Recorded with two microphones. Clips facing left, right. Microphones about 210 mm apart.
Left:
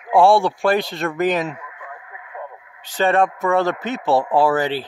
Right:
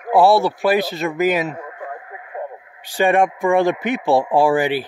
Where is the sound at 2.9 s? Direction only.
15° right (ahead or behind).